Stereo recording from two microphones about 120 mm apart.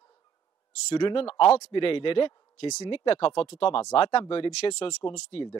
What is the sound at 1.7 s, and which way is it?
Speech, 50° left (ahead or behind).